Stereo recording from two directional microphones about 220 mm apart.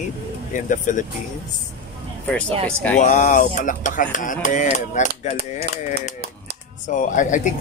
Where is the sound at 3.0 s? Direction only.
35° left (ahead or behind).